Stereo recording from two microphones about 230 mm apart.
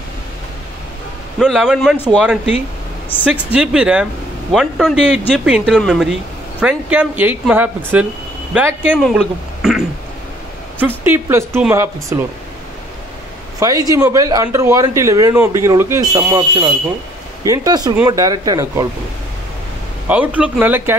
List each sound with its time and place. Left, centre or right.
1.4 s a man's voice: centre
3.5 s a man's voice: centre
9.0 s a sound: centre
10.8 s speech: centre
13.6 s speech: centre
20.1 s speech: centre